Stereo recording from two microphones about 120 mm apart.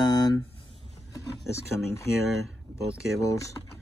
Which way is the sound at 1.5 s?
20° left (ahead or behind).